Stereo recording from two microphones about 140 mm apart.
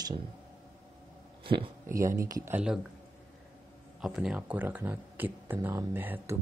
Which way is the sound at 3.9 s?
5° right (ahead or behind).